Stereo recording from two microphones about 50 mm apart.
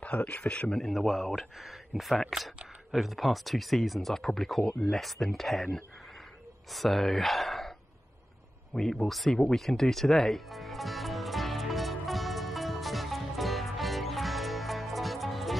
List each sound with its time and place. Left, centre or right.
0.0 s speech: left
0.7 s speech: centre
6.7 s speech: centre
8.7 s speech: centre
9.0 s speech: centre
9.4 s music: centre